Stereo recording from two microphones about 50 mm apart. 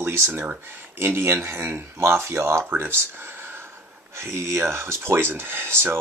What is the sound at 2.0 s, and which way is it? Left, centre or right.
Speech, right.